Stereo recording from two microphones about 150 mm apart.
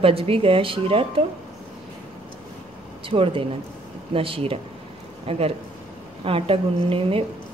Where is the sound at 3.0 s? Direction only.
35° right (ahead or behind).